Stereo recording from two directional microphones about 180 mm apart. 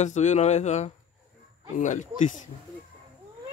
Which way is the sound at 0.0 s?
40° left (ahead or behind).